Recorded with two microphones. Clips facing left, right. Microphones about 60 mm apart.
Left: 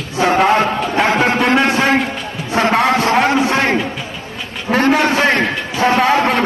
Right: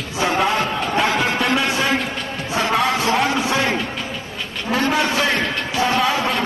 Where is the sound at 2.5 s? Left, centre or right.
Left.